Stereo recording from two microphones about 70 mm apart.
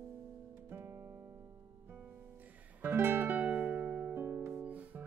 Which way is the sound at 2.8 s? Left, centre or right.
Right.